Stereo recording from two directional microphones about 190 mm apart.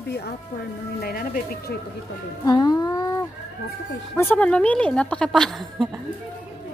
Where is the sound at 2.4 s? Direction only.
20° left (ahead or behind).